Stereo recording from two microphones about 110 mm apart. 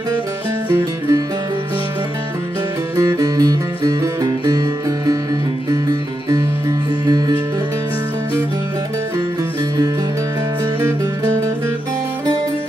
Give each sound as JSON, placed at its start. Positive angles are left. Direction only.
{"t": 3.0, "sound": "music", "side_deg": -30}